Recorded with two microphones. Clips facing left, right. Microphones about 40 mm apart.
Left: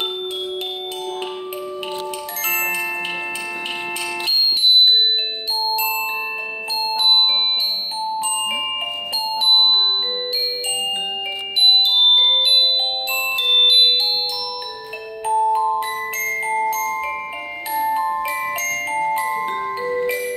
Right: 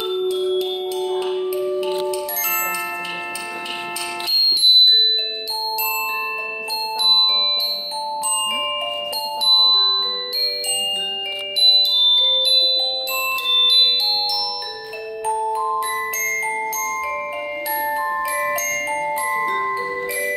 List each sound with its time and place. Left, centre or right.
5.6 s glockenspiel: left
8.0 s music: left
13.2 s music: centre
15.2 s music: left
15.7 s glockenspiel: left
18.7 s glockenspiel: centre